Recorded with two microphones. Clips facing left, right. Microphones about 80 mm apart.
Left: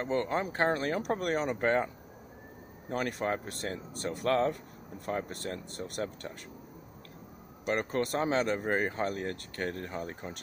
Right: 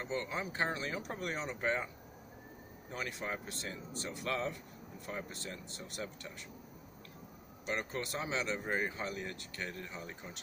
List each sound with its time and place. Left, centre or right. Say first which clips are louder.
0.0 s speech: left 8 dB; left
2.9 s speech: left 9 dB; left
7.6 s speech: left 8 dB; left